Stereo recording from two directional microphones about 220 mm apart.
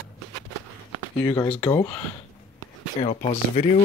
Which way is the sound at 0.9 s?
20° left (ahead or behind).